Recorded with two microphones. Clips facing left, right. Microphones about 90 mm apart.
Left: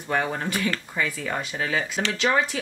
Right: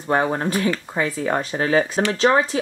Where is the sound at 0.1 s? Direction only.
35° right (ahead or behind).